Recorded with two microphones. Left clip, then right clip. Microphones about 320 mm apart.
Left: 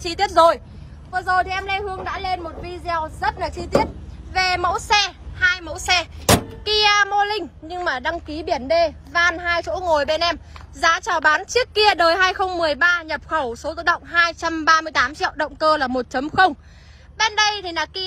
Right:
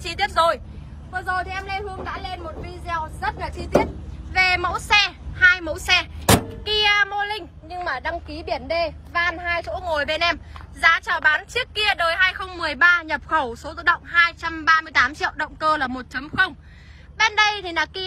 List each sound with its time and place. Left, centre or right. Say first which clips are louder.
0.0 s a woman's voice: left 5 dB; centre